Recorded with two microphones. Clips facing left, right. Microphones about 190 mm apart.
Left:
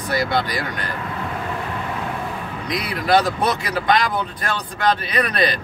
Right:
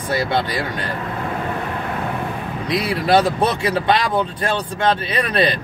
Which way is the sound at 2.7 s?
25° right (ahead or behind).